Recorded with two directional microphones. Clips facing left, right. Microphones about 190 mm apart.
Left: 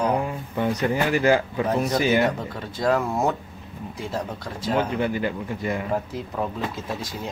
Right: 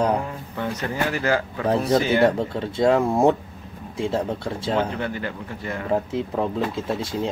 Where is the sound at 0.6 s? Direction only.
15° left (ahead or behind).